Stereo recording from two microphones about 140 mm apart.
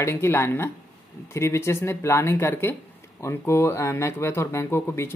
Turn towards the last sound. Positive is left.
turn(degrees=20)  # may be behind; listen again after turning